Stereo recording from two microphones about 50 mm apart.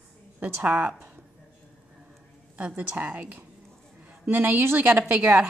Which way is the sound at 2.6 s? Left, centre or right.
Right.